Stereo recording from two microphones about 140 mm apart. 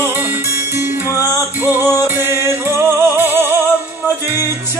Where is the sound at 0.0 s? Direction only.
15° right (ahead or behind).